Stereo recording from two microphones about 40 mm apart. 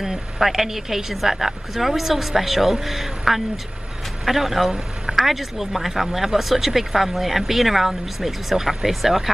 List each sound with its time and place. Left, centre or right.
0.0 s speech: centre
4.6 s a sound: centre
5.1 s speech: centre